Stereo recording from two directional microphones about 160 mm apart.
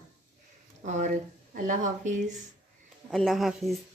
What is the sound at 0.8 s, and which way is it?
Speech, 50° right (ahead or behind).